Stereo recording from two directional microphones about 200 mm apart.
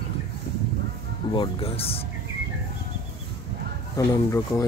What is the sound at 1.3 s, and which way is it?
Speech, 25° left (ahead or behind).